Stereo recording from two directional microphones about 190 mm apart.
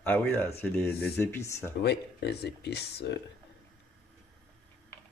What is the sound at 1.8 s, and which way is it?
Speech, 60° left (ahead or behind).